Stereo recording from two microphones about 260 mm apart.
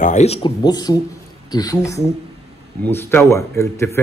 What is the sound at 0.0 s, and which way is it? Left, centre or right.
Speech, left.